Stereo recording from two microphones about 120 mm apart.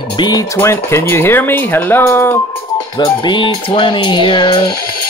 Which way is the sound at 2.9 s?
40° left (ahead or behind).